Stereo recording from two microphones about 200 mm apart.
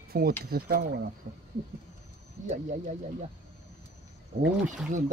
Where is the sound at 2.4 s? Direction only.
35° right (ahead or behind).